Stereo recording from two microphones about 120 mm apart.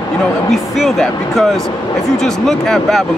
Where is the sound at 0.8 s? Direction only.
Centre (ahead or behind).